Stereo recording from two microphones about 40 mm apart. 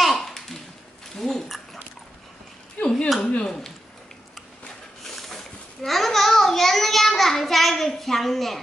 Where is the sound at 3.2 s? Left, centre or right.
Left.